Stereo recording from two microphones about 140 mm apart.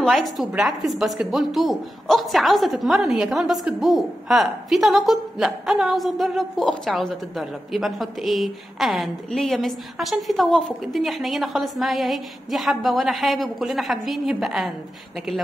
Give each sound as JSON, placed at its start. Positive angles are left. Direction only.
{"t": 0.0, "sound": "a woman's voice", "side_deg": 0}